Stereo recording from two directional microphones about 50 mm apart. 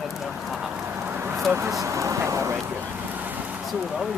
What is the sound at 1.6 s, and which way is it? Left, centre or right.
Speech, right.